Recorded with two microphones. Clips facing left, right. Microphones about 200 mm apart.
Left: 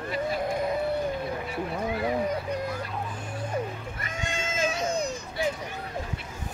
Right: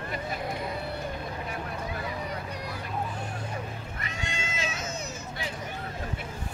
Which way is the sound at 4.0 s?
50° left (ahead or behind).